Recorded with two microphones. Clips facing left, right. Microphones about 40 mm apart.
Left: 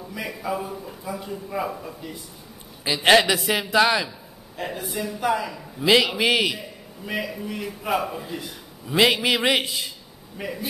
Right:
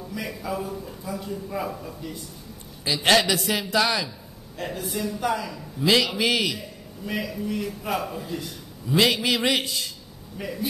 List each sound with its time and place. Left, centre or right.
0.0 s a man's voice: centre